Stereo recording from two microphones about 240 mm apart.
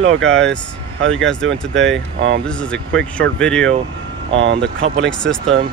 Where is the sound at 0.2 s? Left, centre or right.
Centre.